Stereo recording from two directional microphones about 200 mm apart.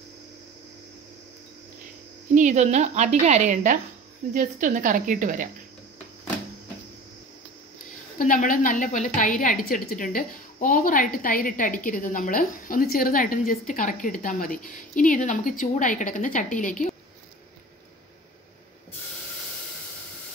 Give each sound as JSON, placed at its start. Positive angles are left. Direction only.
{"t": 2.3, "sound": "a woman's voice", "side_deg": -35}
{"t": 8.2, "sound": "a woman's voice", "side_deg": 45}